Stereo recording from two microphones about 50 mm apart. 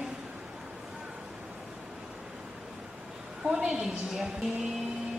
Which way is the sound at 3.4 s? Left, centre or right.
Centre.